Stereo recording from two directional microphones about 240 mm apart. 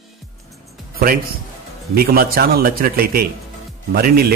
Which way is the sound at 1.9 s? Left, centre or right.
Right.